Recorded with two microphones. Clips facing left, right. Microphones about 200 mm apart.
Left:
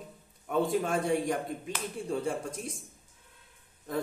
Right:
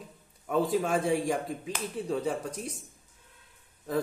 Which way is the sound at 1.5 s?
Centre (ahead or behind).